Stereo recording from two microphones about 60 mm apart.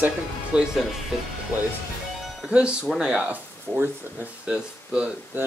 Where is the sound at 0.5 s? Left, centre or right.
Centre.